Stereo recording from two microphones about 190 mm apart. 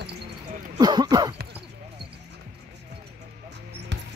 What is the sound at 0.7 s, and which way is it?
Speech, 20° right (ahead or behind).